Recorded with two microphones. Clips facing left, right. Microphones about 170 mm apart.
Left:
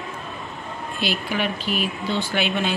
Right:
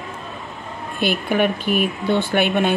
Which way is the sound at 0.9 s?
55° right (ahead or behind).